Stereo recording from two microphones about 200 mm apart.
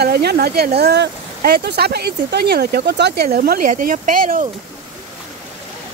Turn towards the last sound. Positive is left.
turn(degrees=-45)  # may be behind; listen again after turning